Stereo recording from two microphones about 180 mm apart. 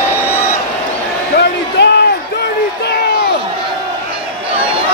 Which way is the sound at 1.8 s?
65° left (ahead or behind).